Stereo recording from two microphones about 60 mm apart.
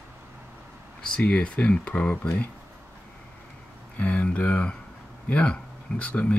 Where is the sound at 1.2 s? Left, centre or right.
Left.